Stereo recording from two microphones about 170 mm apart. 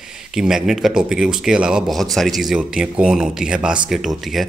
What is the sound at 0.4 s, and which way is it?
Speech, 5° right (ahead or behind).